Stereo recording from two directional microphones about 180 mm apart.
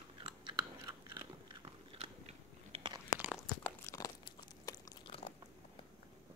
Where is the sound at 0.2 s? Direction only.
25° right (ahead or behind).